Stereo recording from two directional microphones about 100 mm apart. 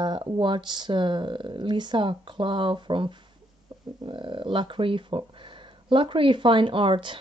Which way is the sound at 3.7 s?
45° right (ahead or behind).